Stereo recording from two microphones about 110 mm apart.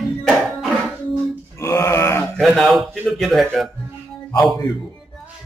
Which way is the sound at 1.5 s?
25° left (ahead or behind).